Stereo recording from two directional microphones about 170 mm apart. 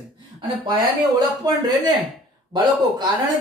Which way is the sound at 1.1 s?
20° right (ahead or behind).